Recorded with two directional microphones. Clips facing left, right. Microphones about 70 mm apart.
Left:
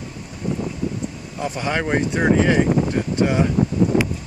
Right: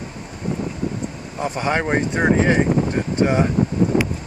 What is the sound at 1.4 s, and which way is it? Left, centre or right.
Speech, right.